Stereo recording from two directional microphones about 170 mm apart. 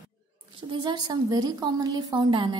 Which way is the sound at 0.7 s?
25° right (ahead or behind).